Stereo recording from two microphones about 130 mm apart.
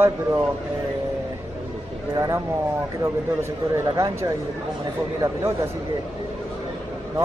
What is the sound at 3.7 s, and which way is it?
Speech, 25° right (ahead or behind).